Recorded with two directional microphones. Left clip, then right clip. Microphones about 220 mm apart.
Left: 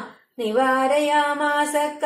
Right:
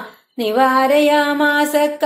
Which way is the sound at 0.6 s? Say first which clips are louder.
Right 6 dB; 40° right (ahead or behind).